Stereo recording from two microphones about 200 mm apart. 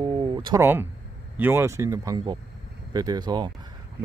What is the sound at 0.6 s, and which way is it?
Speech, 10° right (ahead or behind).